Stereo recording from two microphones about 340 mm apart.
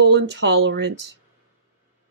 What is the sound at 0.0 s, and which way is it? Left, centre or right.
Speech, right.